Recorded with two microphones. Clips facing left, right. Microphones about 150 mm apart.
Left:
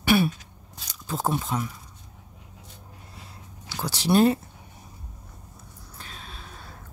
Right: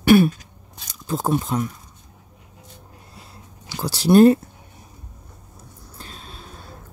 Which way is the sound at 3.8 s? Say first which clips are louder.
Right 7 dB; 40° right (ahead or behind).